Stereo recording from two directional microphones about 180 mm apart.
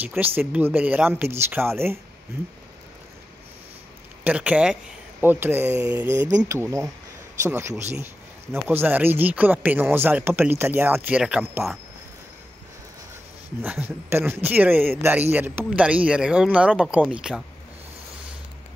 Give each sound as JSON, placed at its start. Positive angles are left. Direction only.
{"t": 0.0, "sound": "speech", "side_deg": -10}
{"t": 4.2, "sound": "speech", "side_deg": -5}
{"t": 13.6, "sound": "speech", "side_deg": -10}